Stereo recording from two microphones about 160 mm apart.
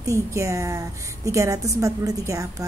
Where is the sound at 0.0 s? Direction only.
20° right (ahead or behind).